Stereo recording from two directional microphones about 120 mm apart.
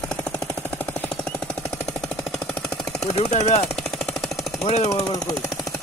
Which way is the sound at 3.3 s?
65° left (ahead or behind).